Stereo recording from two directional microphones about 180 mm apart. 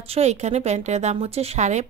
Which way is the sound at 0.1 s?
40° right (ahead or behind).